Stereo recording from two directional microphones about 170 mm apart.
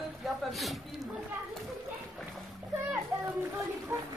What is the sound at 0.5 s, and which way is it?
Speech, centre (ahead or behind).